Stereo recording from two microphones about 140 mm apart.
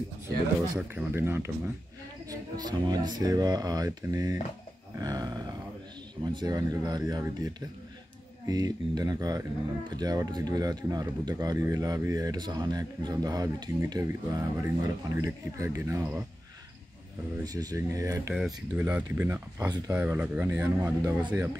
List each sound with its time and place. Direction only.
0.7 s speech: 15° right (ahead or behind)
2.2 s speech: 30° right (ahead or behind)
17.5 s speech: 25° right (ahead or behind)
18.8 s speech: 10° right (ahead or behind)